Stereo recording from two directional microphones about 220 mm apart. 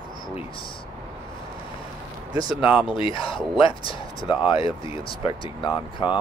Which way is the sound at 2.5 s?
5° right (ahead or behind).